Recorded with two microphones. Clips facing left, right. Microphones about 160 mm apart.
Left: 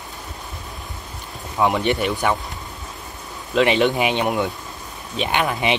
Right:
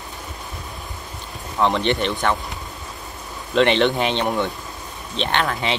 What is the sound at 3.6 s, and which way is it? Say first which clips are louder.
Speech: even; 5° left (ahead or behind).